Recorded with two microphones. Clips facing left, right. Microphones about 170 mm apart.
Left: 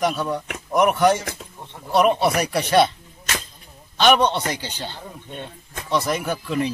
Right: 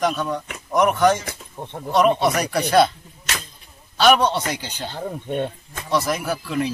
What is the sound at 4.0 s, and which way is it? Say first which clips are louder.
Speech: right 1 dB; 5° right (ahead or behind).